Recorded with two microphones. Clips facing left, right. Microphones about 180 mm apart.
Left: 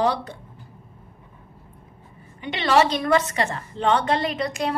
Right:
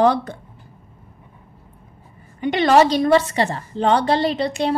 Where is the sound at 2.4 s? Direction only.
45° right (ahead or behind).